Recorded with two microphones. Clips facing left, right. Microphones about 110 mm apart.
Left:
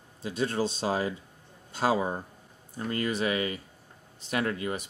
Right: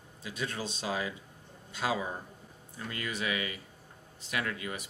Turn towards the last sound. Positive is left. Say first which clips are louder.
# left 6 dB
turn(degrees=35)  # may be behind; listen again after turning